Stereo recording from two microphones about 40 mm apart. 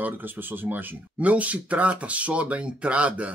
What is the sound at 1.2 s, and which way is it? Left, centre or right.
Speech, right.